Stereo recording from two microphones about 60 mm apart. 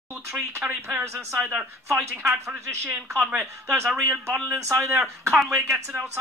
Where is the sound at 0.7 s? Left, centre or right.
Right.